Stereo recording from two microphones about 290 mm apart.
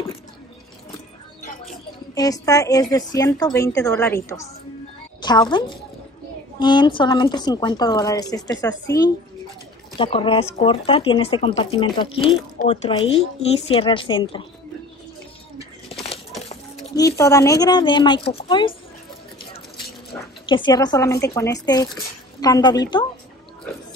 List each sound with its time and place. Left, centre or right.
2.1 s a woman's voice: centre
6.6 s speech: centre
15.9 s a sound: centre
16.9 s speech: centre
20.4 s speech: centre